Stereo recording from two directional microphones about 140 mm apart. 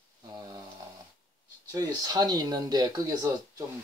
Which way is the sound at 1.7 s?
30° right (ahead or behind).